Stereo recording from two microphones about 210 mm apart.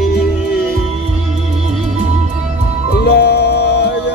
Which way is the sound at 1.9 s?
30° right (ahead or behind).